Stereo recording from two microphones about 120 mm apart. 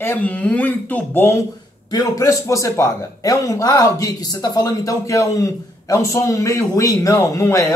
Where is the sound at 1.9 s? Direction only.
30° left (ahead or behind).